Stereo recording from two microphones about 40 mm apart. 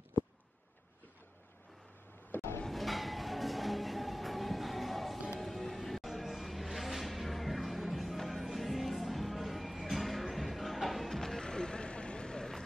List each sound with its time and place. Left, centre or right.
2.3 s a sound: left
2.7 s music: centre
5.4 s vehicle: centre
11.4 s vehicle: centre